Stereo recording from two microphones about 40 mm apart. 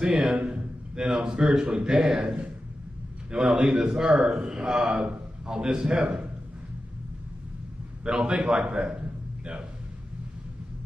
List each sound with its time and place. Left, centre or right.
0.0 s a man's voice: right
3.3 s a man's voice: centre
8.0 s a man's voice: right